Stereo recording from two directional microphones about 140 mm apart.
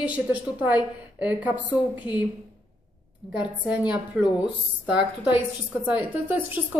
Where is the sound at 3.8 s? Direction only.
30° left (ahead or behind).